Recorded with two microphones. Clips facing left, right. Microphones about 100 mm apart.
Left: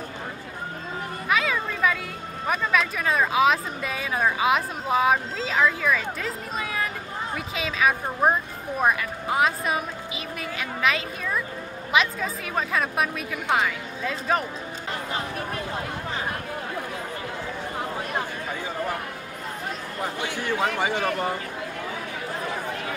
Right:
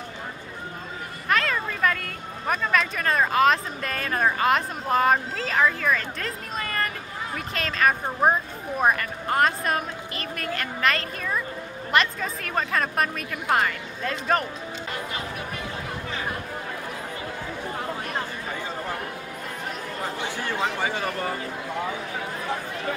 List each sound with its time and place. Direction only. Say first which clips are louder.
1.3 s a woman's voice: even; 5° left (ahead or behind)